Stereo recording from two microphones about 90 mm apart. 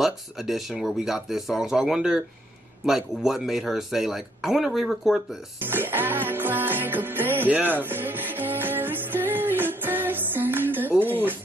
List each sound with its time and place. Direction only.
0.0 s speech: centre (ahead or behind)
5.6 s music: 25° right (ahead or behind)